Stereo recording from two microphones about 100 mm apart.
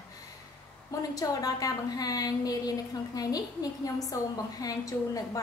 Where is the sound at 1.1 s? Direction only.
35° left (ahead or behind).